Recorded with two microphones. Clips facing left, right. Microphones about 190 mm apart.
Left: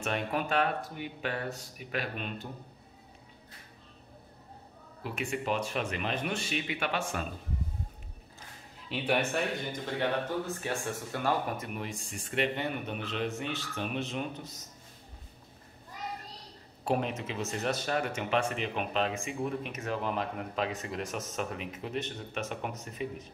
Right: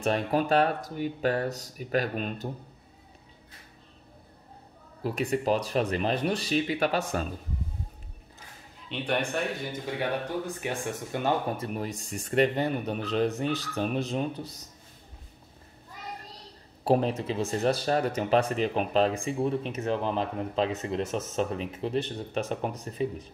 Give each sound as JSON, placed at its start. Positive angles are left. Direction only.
{"t": 0.0, "sound": "speech", "side_deg": -35}
{"t": 5.0, "sound": "speech", "side_deg": -40}
{"t": 8.8, "sound": "speech", "side_deg": 5}
{"t": 9.7, "sound": "speech", "side_deg": -15}
{"t": 16.8, "sound": "speech", "side_deg": -35}